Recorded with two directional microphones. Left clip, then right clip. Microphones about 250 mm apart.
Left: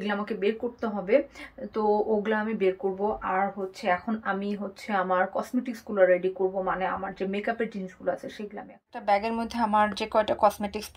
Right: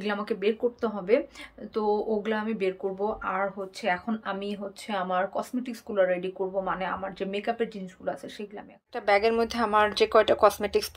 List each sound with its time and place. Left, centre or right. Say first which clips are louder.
0.0 s speech: even; centre
8.9 s a woman's voice: right 3 dB; centre